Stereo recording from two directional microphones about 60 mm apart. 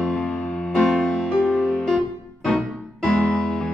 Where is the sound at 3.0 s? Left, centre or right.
Left.